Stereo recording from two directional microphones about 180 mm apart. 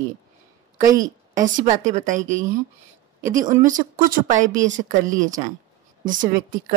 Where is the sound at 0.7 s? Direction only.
45° right (ahead or behind).